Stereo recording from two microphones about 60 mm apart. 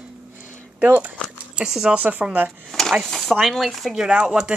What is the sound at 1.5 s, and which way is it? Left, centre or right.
Speech, centre.